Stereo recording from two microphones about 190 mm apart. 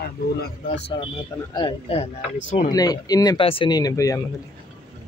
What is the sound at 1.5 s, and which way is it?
Speech, 25° left (ahead or behind).